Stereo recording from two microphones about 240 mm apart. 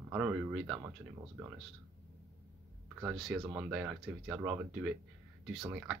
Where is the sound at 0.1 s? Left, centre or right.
Centre.